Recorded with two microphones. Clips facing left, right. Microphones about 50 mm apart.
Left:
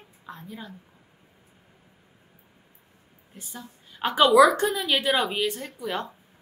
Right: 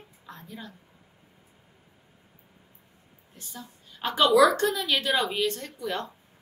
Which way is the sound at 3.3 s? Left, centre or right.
Centre.